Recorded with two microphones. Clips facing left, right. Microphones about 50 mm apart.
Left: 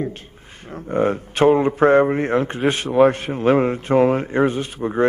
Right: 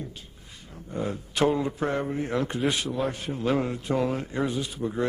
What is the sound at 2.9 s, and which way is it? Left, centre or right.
Speech, left.